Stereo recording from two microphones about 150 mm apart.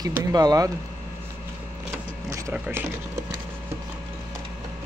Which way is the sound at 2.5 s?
10° right (ahead or behind).